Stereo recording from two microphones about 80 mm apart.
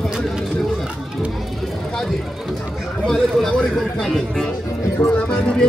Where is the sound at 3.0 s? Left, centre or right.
Centre.